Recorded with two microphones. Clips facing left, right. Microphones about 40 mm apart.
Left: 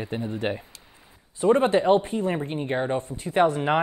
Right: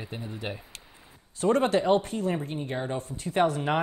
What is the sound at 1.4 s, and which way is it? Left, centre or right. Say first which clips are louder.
Speech: left 4 dB; left.